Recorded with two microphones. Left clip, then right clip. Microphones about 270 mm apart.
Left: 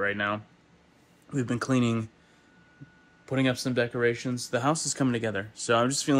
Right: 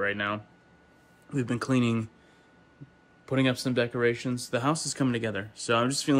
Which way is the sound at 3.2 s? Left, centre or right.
Centre.